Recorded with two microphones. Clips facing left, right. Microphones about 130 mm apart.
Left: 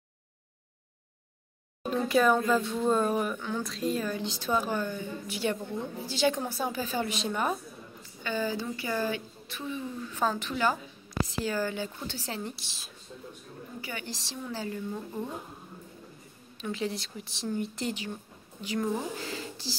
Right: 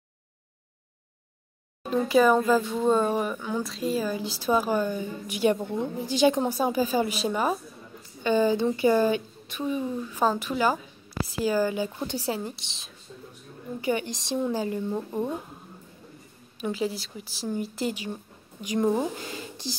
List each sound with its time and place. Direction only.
1.9 s a woman's voice: centre (ahead or behind)
8.2 s a woman's voice: 20° right (ahead or behind)
12.5 s speech: 5° left (ahead or behind)
13.7 s a woman's voice: 20° right (ahead or behind)
16.7 s a woman's voice: 5° right (ahead or behind)
18.8 s a woman's voice: 25° right (ahead or behind)